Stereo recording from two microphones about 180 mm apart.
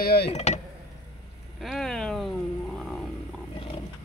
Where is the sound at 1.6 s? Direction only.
Centre (ahead or behind).